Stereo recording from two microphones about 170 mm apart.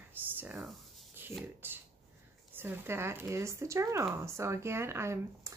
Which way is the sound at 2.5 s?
15° right (ahead or behind).